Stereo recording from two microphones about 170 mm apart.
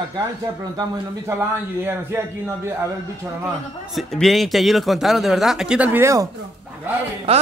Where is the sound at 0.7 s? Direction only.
15° right (ahead or behind).